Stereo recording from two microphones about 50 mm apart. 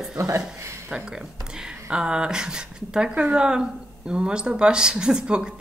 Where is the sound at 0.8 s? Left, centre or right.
Centre.